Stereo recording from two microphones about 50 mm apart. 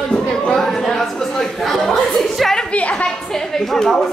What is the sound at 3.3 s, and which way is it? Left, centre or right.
Speech, centre.